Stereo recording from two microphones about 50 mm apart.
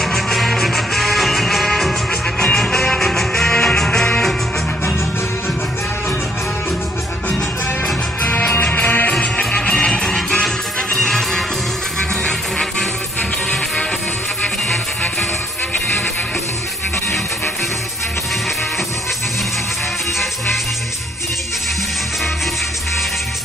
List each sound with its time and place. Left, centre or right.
0.0 s music: centre
8.2 s music: left
9.2 s music: left